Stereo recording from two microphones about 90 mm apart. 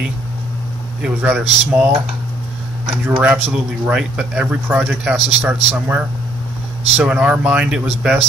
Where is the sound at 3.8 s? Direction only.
10° right (ahead or behind).